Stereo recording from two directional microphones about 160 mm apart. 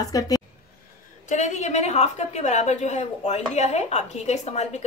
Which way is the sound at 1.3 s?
50° left (ahead or behind).